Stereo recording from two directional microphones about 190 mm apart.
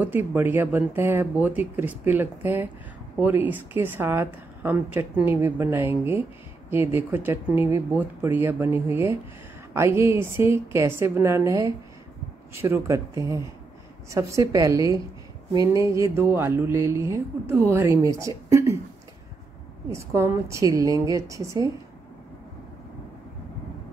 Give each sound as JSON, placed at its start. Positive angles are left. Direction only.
{"t": 0.0, "sound": "a woman's voice", "side_deg": -10}
{"t": 19.9, "sound": "a woman's voice", "side_deg": -15}